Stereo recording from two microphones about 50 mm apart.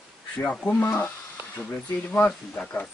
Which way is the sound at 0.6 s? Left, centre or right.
Left.